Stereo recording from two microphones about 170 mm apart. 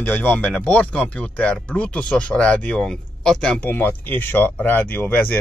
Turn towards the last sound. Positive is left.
turn(degrees=10)  # may be behind; listen again after turning